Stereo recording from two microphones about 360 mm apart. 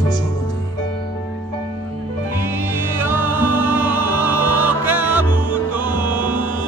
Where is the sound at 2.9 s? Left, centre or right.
Centre.